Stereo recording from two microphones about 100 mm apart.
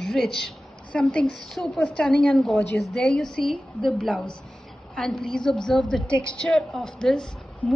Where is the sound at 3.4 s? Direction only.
55° left (ahead or behind).